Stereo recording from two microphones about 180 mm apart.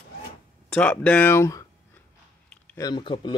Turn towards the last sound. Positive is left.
turn(degrees=25)  # may be behind; listen again after turning